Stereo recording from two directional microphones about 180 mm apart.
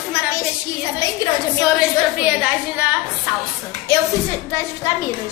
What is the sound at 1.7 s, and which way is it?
A woman's voice, 5° right (ahead or behind).